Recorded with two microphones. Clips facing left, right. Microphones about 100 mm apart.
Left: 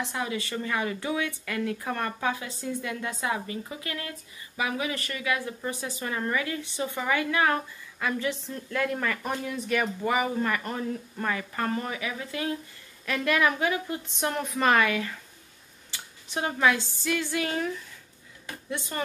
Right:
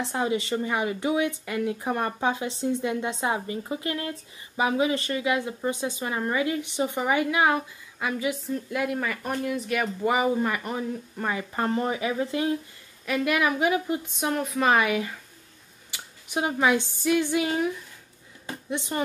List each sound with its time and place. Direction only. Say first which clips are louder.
0.0 s speech: right 5 dB; 30° right (ahead or behind); by 9.8 s 5° right (ahead or behind)
10.0 s speech: right 6 dB; 20° right (ahead or behind)
13.0 s a woman's voice: right 1 dB; 10° right (ahead or behind)
14.2 s speech: right 1 dB; centre (ahead or behind)
14.7 s a woman's voice: right 1 dB; 15° right (ahead or behind)